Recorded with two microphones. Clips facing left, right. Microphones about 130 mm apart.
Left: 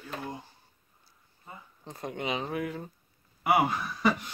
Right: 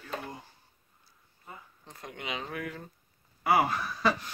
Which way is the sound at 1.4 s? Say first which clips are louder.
Left 3 dB; 25° left (ahead or behind).